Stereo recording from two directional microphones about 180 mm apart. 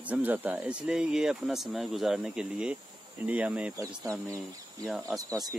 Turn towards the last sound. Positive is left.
turn(degrees=-20)  # may be behind; listen again after turning